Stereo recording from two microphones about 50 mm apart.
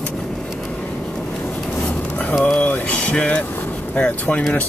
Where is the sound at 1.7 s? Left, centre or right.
Left.